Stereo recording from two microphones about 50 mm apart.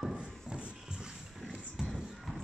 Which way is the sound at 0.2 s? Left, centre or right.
Centre.